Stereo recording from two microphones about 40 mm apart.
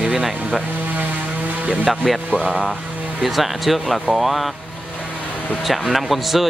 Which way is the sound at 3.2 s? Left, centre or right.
Centre.